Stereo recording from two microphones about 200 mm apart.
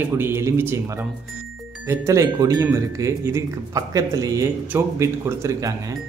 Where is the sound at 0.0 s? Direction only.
10° right (ahead or behind).